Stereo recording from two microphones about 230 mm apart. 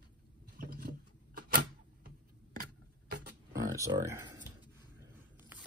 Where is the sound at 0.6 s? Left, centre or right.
Right.